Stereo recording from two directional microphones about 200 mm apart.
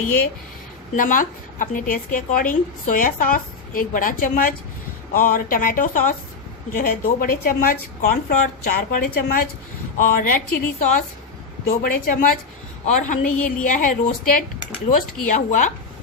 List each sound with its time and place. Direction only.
0.9 s a woman's voice: 40° left (ahead or behind)